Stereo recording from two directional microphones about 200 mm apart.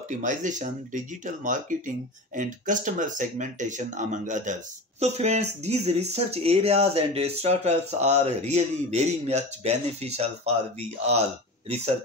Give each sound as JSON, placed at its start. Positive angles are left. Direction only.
{"t": 0.1, "sound": "speech", "side_deg": -40}